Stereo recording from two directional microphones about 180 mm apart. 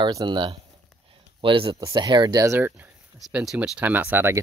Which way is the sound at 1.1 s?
30° right (ahead or behind).